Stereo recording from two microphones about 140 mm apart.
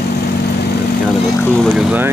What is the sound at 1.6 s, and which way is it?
Speech, 5° right (ahead or behind).